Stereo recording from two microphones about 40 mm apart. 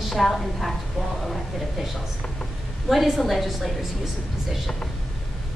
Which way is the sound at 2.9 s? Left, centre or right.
Centre.